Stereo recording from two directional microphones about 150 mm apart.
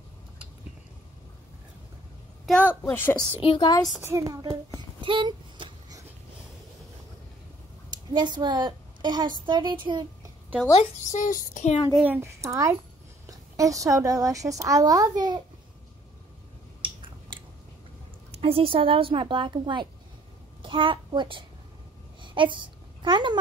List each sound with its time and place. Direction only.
2.6 s a woman's voice: 15° left (ahead or behind)
3.4 s a woman's voice: 30° left (ahead or behind)
4.0 s a child's voice: 20° right (ahead or behind)
5.0 s a sound: 35° right (ahead or behind)
7.9 s a woman's voice: 30° right (ahead or behind)
10.7 s speech: 50° left (ahead or behind)
11.9 s a child's voice: 5° right (ahead or behind)
12.2 s a child's voice: 20° right (ahead or behind)
13.3 s a sound: 20° right (ahead or behind)
13.8 s a child's voice: 20° right (ahead or behind)
16.8 s a sound: 35° right (ahead or behind)
18.3 s a child's voice: 40° right (ahead or behind)
22.2 s a sound: 35° right (ahead or behind)